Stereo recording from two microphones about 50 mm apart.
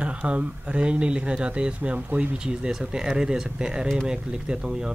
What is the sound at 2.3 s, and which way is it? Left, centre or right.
Speech, centre.